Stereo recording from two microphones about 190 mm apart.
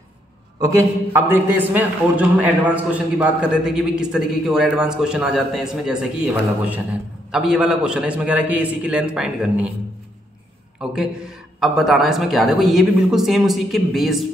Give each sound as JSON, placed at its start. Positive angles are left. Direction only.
{"t": 0.6, "sound": "a man's voice", "side_deg": -20}
{"t": 7.2, "sound": "a man's voice", "side_deg": -5}
{"t": 10.8, "sound": "a man's voice", "side_deg": -5}